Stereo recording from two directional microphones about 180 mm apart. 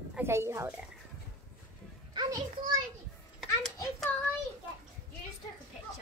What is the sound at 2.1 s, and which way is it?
Children playing, 25° right (ahead or behind).